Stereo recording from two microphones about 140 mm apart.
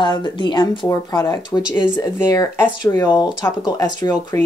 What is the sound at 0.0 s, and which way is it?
Speech, 30° left (ahead or behind).